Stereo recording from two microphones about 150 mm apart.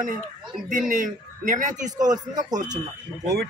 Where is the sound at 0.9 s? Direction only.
55° right (ahead or behind).